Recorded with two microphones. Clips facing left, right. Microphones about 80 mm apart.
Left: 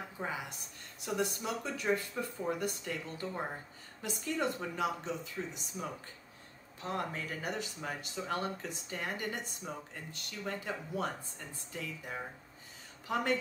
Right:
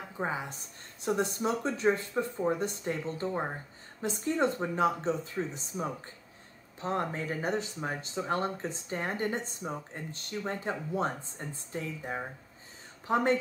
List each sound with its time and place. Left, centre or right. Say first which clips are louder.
0.2 s speech: right 6 dB; right